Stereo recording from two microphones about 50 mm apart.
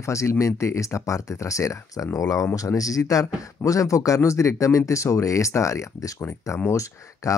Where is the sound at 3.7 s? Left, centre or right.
Left.